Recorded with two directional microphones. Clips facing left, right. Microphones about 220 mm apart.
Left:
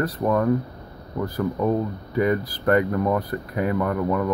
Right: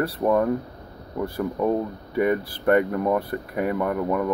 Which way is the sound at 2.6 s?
5° right (ahead or behind).